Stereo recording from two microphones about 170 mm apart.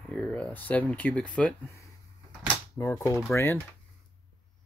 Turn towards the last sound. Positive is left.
turn(degrees=10)  # may be behind; listen again after turning